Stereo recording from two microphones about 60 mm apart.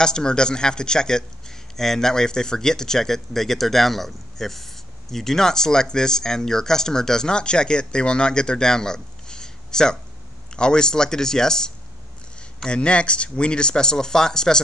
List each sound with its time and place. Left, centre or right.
0.0 s speech: centre